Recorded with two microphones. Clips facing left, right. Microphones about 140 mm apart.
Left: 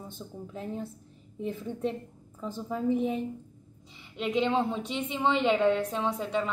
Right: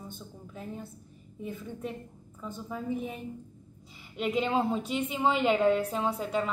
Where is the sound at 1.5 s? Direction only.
25° left (ahead or behind).